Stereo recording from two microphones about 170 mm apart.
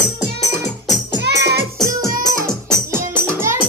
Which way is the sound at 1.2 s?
70° right (ahead or behind).